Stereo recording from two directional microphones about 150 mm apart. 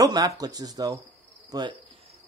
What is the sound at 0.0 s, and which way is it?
A man's voice, 25° right (ahead or behind).